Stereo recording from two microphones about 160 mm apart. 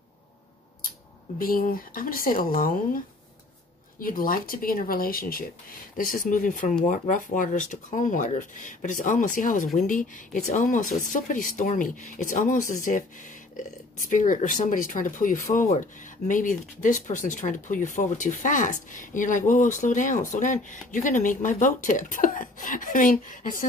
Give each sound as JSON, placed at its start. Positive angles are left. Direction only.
{"t": 1.4, "sound": "speech", "side_deg": 60}
{"t": 4.0, "sound": "speech", "side_deg": 60}